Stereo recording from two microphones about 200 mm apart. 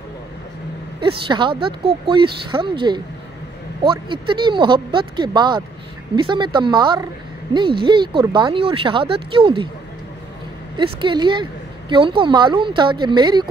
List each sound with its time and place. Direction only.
1.0 s speech: 25° right (ahead or behind)
10.8 s speech: 25° right (ahead or behind)